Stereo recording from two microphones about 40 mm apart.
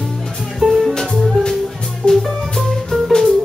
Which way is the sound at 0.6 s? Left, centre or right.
Centre.